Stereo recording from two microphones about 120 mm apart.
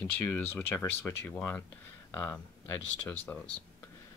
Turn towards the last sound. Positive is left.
turn(degrees=15)  # may be behind; listen again after turning